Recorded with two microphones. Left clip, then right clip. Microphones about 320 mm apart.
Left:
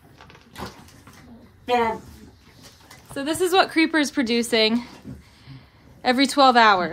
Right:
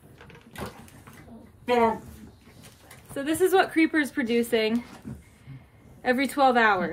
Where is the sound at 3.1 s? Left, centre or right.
Centre.